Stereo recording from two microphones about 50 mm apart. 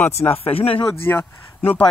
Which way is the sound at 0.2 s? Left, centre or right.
Left.